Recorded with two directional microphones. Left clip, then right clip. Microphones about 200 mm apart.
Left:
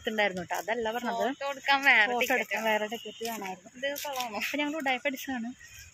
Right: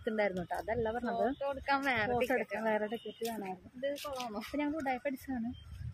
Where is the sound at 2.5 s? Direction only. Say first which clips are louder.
Left 5 dB; 5° left (ahead or behind).